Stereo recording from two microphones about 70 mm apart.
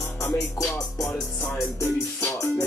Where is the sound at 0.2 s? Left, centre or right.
Left.